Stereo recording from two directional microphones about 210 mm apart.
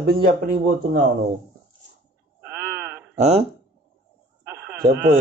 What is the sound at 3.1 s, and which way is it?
Speech, 30° right (ahead or behind).